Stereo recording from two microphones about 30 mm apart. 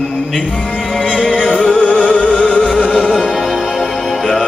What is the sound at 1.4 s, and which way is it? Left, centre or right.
Music, left.